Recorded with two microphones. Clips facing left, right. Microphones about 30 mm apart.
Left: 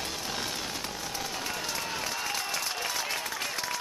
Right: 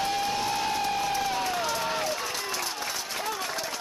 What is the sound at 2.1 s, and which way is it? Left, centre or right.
Applause, centre.